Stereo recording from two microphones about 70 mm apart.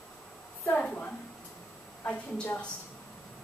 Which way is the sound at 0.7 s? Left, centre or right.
Centre.